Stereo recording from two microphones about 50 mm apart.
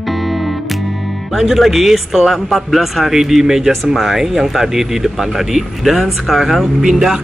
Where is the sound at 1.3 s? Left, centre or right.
Centre.